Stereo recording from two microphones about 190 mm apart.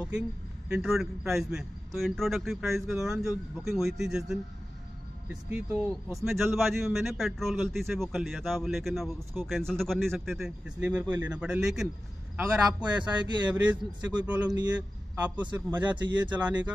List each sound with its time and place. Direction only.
0.7 s a man's voice: centre (ahead or behind)
13.0 s speech: 25° right (ahead or behind)
13.6 s a man's voice: 5° right (ahead or behind)
15.4 s speech: 20° right (ahead or behind)